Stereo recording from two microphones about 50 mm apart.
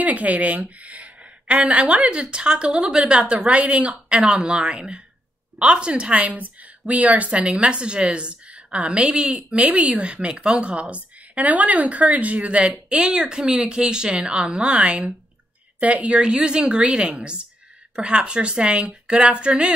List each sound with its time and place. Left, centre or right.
0.0 s a woman's voice: right